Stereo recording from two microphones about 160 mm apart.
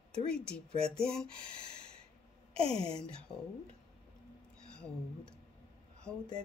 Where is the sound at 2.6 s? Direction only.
35° right (ahead or behind).